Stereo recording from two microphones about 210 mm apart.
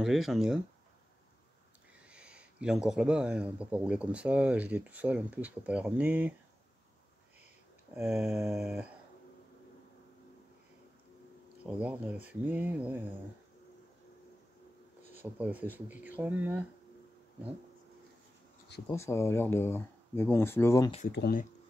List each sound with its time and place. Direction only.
0.0 s speech: centre (ahead or behind)
2.0 s speech: 5° right (ahead or behind)
8.1 s speech: centre (ahead or behind)
11.8 s speech: 5° right (ahead or behind)
15.1 s speech: 5° right (ahead or behind)
18.9 s speech: 15° left (ahead or behind)
21.1 s speech: 50° left (ahead or behind)